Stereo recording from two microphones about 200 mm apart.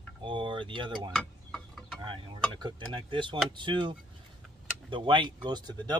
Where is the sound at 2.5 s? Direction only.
25° right (ahead or behind).